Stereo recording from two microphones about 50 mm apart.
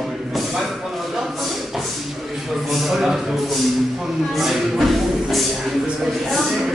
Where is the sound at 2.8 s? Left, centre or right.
Centre.